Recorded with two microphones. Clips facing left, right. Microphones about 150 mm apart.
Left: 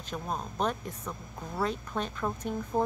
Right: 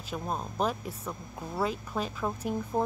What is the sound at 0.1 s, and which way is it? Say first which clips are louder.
Speech: right 1 dB; 5° right (ahead or behind).